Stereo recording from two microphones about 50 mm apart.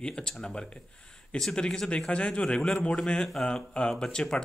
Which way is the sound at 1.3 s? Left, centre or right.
Centre.